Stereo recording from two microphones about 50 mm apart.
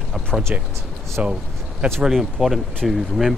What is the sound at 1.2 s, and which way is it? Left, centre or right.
Speech, right.